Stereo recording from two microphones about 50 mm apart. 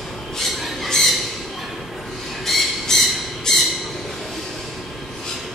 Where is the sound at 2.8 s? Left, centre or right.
Centre.